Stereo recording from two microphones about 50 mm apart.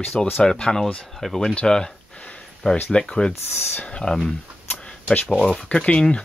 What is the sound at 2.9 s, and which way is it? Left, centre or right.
Speech, centre.